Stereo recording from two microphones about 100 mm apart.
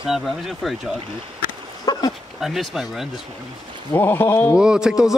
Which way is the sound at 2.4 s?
Centre (ahead or behind).